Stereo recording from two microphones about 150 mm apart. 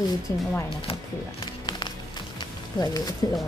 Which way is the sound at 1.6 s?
30° left (ahead or behind).